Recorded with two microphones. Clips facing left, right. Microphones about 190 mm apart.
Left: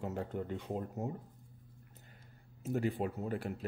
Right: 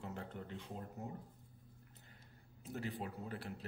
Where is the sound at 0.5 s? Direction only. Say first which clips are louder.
Left 9 dB; 65° left (ahead or behind).